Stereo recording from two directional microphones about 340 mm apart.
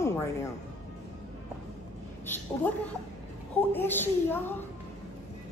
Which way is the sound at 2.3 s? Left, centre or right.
Centre.